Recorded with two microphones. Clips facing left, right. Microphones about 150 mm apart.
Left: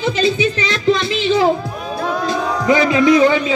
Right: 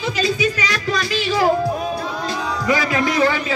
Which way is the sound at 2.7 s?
20° left (ahead or behind).